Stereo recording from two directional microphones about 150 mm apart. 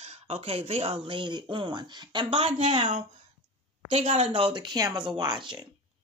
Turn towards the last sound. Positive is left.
turn(degrees=-30)  # may be behind; listen again after turning